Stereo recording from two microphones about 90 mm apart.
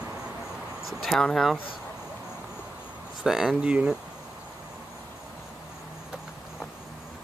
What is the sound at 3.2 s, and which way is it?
Speech, 5° right (ahead or behind).